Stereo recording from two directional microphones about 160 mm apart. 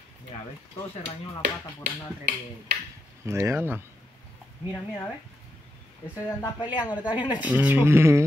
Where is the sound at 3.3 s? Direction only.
15° right (ahead or behind).